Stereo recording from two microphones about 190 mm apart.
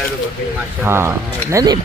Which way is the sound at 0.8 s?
15° right (ahead or behind).